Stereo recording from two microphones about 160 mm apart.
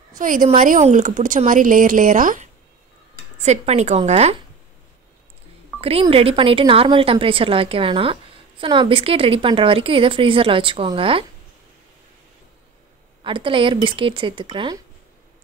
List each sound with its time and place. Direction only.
0.2 s speech: 55° right (ahead or behind)
3.3 s a woman's voice: 45° right (ahead or behind)
5.8 s speech: 35° right (ahead or behind)
13.2 s speech: 30° right (ahead or behind)